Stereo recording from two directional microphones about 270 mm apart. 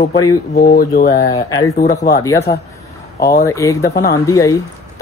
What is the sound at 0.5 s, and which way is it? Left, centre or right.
Speech, left.